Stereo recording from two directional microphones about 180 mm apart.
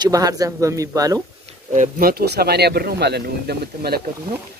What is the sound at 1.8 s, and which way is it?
Speech, 55° right (ahead or behind).